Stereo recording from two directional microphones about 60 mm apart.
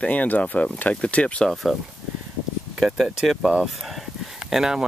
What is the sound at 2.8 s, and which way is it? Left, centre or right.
Speech, centre.